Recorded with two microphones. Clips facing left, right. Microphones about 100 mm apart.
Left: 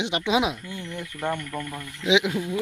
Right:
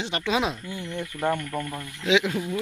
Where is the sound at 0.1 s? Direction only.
15° left (ahead or behind).